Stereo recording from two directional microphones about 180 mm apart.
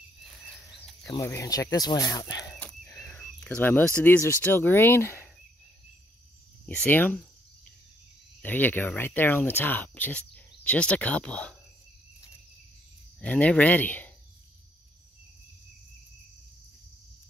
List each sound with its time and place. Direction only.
1.0 s speech: 15° left (ahead or behind)
6.6 s speech: 10° left (ahead or behind)
8.4 s speech: 10° left (ahead or behind)
13.2 s speech: 5° left (ahead or behind)